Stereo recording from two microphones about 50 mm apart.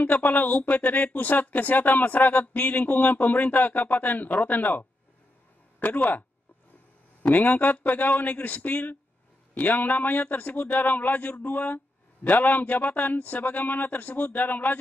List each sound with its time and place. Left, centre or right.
0.0 s speech: left
7.2 s speech: left